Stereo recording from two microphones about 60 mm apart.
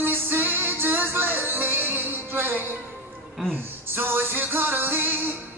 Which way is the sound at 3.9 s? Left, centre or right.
Right.